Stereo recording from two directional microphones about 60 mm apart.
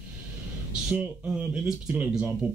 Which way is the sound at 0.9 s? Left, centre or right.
Right.